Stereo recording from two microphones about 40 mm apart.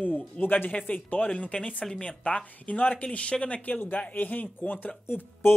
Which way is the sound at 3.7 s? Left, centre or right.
Left.